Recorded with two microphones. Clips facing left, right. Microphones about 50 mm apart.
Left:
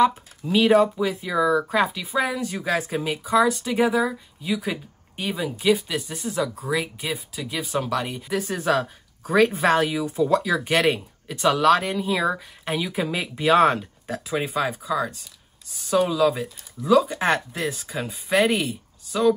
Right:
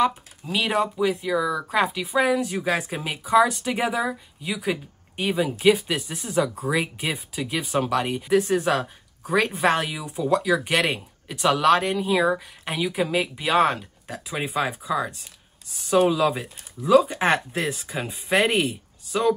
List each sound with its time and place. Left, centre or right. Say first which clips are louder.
0.5 s speech: left 6 dB; centre
1.7 s speech: even; centre
16.0 s speech: even; centre